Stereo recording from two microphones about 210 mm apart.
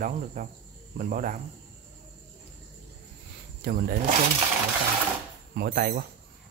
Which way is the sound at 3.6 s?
45° right (ahead or behind).